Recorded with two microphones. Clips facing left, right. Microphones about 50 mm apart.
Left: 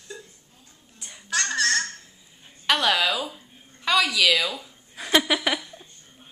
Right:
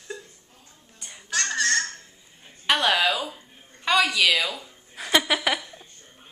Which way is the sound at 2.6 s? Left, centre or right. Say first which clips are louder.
Even; centre.